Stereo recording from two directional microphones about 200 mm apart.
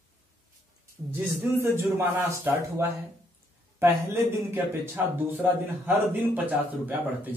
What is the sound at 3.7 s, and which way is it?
Speech, 10° right (ahead or behind).